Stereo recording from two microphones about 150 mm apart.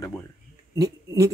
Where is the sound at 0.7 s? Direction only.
20° right (ahead or behind).